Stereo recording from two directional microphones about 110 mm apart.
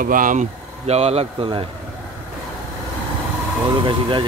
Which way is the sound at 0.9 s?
70° right (ahead or behind).